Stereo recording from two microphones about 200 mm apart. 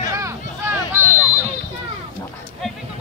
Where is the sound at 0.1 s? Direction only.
15° right (ahead or behind).